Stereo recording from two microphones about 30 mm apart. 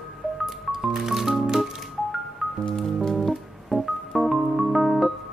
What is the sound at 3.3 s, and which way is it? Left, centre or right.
Music, centre.